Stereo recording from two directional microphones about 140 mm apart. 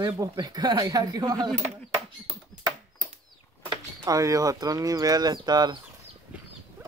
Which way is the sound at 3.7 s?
25° right (ahead or behind).